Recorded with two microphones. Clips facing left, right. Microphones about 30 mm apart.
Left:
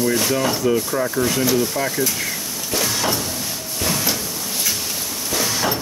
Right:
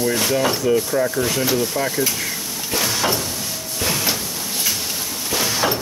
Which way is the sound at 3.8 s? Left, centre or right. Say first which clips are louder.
Even; centre.